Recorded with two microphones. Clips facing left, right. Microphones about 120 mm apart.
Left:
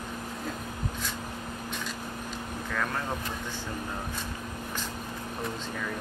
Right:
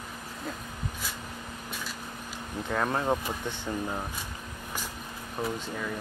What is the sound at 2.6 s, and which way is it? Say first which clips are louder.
Speech: right 4 dB; 25° right (ahead or behind).